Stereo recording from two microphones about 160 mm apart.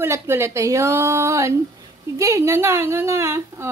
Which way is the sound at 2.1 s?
20° right (ahead or behind).